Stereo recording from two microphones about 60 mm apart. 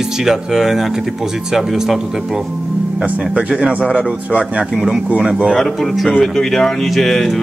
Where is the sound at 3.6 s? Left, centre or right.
Centre.